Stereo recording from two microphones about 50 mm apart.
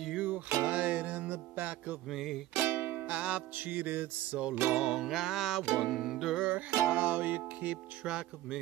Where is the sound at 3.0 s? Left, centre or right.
Right.